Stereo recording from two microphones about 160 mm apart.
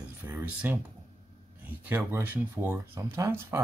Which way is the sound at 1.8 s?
10° right (ahead or behind).